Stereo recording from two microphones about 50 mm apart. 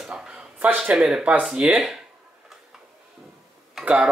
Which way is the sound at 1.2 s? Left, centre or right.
Right.